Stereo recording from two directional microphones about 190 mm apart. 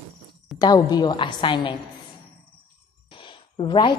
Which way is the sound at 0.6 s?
20° left (ahead or behind).